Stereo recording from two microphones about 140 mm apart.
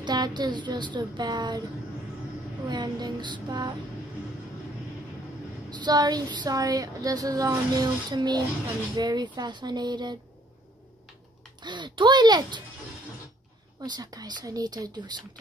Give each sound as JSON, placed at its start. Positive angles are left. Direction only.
{"t": 0.0, "sound": "a woman's voice", "side_deg": -30}
{"t": 2.7, "sound": "a woman's voice", "side_deg": -30}
{"t": 5.7, "sound": "a sound", "side_deg": -30}
{"t": 8.9, "sound": "a woman's voice", "side_deg": -30}
{"t": 11.6, "sound": "a woman's voice", "side_deg": -35}
{"t": 13.7, "sound": "a sound", "side_deg": -30}